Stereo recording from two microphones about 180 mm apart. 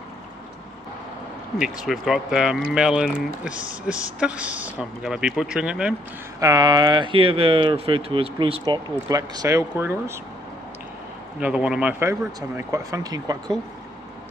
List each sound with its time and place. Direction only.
1.6 s speech: centre (ahead or behind)
6.4 s speech: 20° right (ahead or behind)
11.3 s speech: 5° right (ahead or behind); by 13.6 s 20° right (ahead or behind)